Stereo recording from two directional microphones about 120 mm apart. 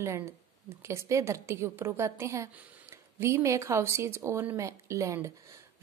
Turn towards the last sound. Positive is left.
turn(degrees=-25)  # may be behind; listen again after turning